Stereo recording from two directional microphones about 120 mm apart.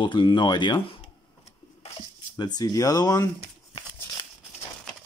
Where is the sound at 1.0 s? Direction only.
65° left (ahead or behind).